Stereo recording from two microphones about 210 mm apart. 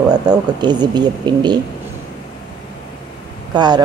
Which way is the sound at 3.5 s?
20° right (ahead or behind).